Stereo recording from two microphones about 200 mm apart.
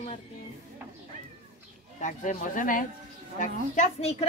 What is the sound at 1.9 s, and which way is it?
Speech, 40° left (ahead or behind).